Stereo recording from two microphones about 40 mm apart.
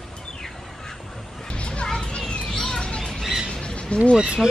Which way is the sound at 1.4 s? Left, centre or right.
Left.